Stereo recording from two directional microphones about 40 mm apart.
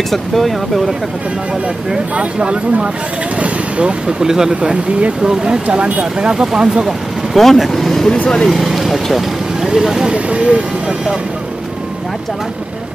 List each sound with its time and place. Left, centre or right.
0.1 s speech: centre
2.1 s speech: right
3.3 s vehicle: right
4.2 s speech: centre
7.3 s speech: centre
8.5 s speech: centre
10.0 s speech: right